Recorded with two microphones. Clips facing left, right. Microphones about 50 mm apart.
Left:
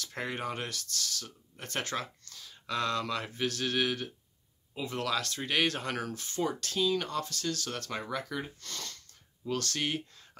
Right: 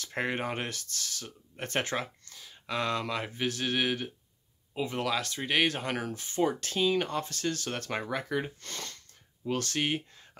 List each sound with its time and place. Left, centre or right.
0.0 s speech: right; by 6.3 s centre
6.3 s speech: right